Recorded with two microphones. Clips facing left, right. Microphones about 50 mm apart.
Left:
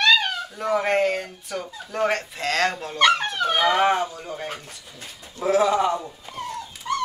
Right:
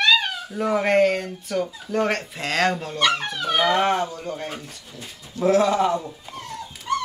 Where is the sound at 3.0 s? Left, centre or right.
Left.